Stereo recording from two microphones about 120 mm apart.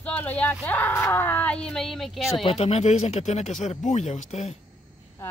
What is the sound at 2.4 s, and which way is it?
Speech, 60° left (ahead or behind).